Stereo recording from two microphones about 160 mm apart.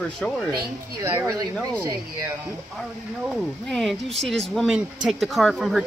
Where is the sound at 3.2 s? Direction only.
Centre (ahead or behind).